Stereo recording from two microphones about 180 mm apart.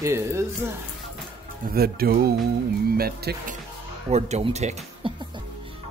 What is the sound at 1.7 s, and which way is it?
Speech, 55° right (ahead or behind).